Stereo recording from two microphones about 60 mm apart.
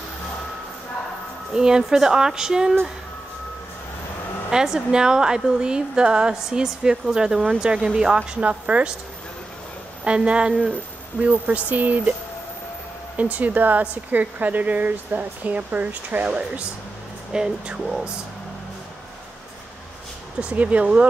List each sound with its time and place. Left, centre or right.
1.5 s a woman's voice: centre
4.5 s a woman's voice: centre
10.0 s speech: centre
13.1 s a woman's voice: right; by 18.0 s centre
20.3 s speech: centre